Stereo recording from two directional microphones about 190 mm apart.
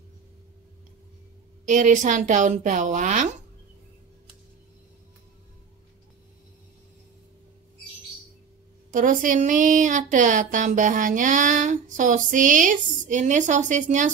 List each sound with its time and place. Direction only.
1.7 s speech: 40° right (ahead or behind)
8.9 s speech: 45° right (ahead or behind)